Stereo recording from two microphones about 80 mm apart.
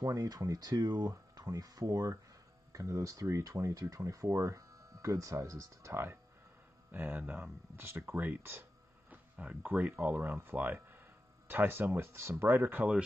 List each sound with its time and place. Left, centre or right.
0.0 s speech: right
6.9 s speech: right